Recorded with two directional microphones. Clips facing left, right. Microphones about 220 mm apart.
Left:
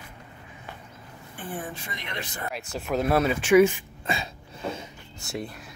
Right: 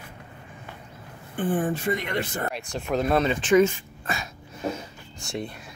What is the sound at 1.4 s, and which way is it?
Speech, 50° right (ahead or behind).